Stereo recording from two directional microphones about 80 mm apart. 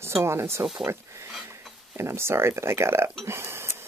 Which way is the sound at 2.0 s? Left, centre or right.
Right.